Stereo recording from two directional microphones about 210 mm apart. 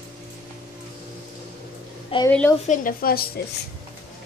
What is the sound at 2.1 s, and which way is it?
Speech, 25° left (ahead or behind).